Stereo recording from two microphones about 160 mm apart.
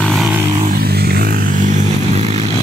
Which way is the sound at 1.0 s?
75° right (ahead or behind).